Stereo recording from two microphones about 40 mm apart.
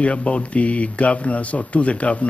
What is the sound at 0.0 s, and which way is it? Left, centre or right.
A man's voice, left.